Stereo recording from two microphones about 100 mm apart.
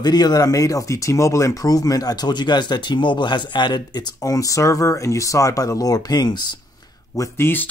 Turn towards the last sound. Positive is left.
turn(degrees=20)  # may be behind; listen again after turning